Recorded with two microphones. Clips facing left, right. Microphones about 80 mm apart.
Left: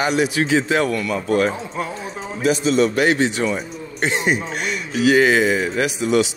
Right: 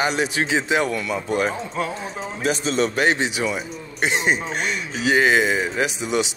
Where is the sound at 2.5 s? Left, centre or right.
Right.